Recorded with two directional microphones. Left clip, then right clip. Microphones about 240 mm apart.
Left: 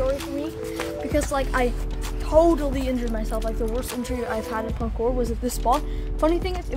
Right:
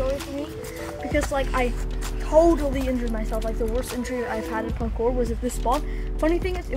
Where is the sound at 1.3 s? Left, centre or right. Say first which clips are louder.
Left 1 dB; centre.